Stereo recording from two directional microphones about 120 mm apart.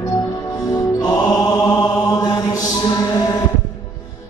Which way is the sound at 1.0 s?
35° left (ahead or behind).